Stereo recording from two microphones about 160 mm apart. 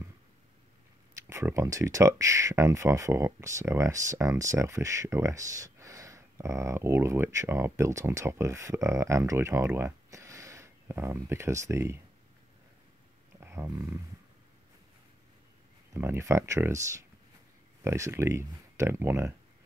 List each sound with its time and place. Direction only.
1.2 s speech: 15° right (ahead or behind)
13.4 s a sound: 15° right (ahead or behind)
15.9 s speech: 15° right (ahead or behind)